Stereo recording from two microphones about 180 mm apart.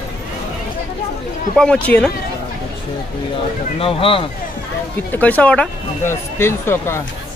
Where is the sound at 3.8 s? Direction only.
30° left (ahead or behind).